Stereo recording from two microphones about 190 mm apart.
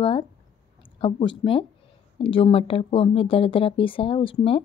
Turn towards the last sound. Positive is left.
turn(degrees=30)  # may be behind; listen again after turning